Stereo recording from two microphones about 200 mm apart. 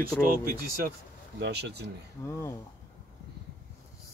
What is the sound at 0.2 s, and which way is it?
Speech, 45° right (ahead or behind).